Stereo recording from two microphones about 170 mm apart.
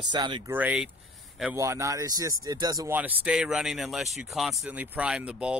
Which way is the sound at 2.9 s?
10° right (ahead or behind).